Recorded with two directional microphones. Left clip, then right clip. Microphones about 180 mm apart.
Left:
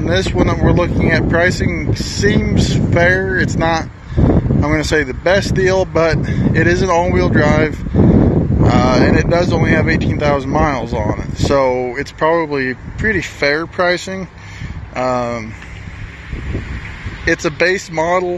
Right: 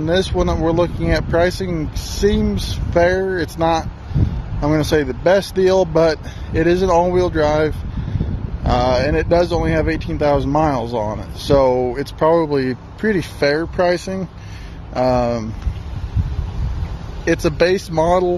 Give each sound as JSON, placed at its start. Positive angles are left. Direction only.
{"t": 0.0, "sound": "speech", "side_deg": -15}
{"t": 13.0, "sound": "speech", "side_deg": -25}
{"t": 17.2, "sound": "speech", "side_deg": -20}